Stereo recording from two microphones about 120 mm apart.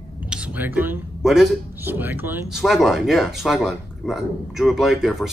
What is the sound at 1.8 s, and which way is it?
Speech, 15° right (ahead or behind).